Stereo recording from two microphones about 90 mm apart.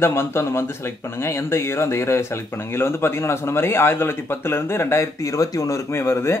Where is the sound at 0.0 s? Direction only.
30° left (ahead or behind).